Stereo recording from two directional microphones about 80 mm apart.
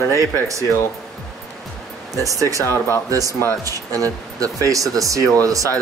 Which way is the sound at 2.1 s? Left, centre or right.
Right.